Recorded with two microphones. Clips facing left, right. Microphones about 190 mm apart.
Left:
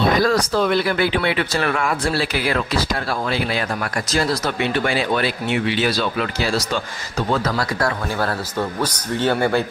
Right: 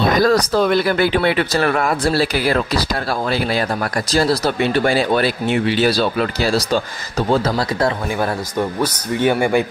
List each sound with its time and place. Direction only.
0.2 s speech: 40° right (ahead or behind)
4.1 s speech: 35° right (ahead or behind); by 9.7 s 15° right (ahead or behind)